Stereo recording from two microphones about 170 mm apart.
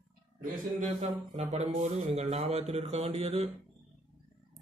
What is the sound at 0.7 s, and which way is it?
Mantra, 45° right (ahead or behind).